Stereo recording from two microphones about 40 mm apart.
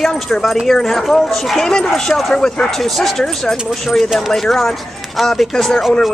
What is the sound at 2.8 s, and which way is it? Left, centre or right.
Speech, centre.